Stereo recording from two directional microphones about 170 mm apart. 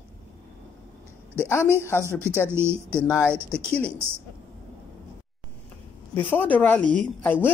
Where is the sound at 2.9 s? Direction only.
15° left (ahead or behind).